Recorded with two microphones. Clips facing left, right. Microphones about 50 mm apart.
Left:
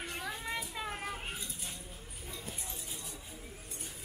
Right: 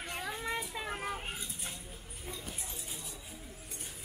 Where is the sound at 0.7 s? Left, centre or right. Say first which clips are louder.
Right 1 dB; centre.